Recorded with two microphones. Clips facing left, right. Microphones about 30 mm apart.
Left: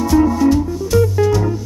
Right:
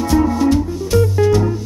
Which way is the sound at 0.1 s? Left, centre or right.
Centre.